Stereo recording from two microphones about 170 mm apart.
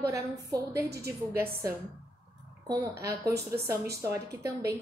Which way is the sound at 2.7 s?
15° right (ahead or behind).